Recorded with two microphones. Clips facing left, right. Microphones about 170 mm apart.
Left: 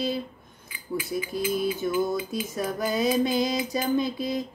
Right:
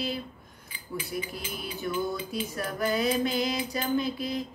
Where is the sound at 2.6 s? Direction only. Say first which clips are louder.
Left 2 dB; 20° left (ahead or behind).